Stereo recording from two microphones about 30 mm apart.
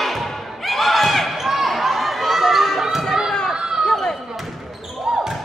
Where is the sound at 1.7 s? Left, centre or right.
Centre.